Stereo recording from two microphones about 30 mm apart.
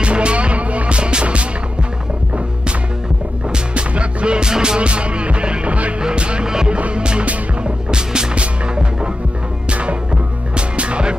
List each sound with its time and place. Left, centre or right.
0.0 s music: right
3.7 s music: right
4.8 s music: right
5.9 s music: right
6.4 s music: right
6.9 s music: right
9.7 s music: right